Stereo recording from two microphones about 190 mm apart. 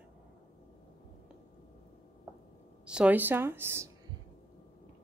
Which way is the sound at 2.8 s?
5° right (ahead or behind).